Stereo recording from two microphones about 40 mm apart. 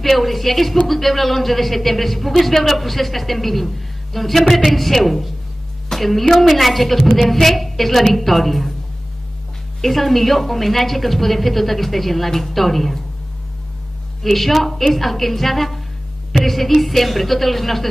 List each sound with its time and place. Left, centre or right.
0.0 s a man's voice: centre
9.8 s a man's voice: centre
14.2 s a man's voice: centre